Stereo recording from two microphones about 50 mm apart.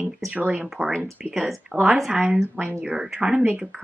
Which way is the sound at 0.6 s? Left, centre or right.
Centre.